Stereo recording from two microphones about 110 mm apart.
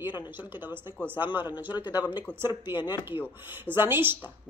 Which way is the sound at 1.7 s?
40° left (ahead or behind).